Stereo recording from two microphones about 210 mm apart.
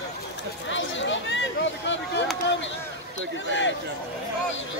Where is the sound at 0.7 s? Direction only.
60° left (ahead or behind).